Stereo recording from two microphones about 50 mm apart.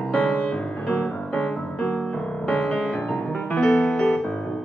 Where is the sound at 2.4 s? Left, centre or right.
Left.